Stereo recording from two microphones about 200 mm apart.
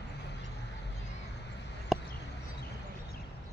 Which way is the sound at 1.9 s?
Centre (ahead or behind).